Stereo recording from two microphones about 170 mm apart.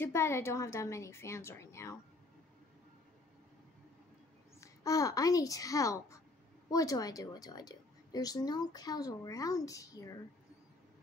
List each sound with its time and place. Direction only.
0.0 s a woman's voice: 15° left (ahead or behind)
4.6 s a child's voice: 20° left (ahead or behind)